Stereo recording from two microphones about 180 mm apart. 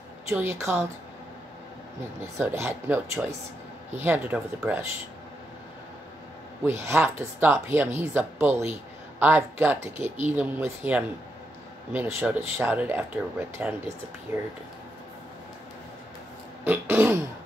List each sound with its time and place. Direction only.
0.3 s speech: 15° right (ahead or behind)
2.3 s speech: 15° right (ahead or behind)
6.6 s speech: 15° right (ahead or behind)
16.6 s speech: 10° right (ahead or behind)